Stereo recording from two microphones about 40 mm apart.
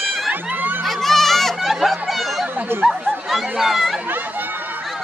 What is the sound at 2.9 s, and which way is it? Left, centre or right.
Speech, centre.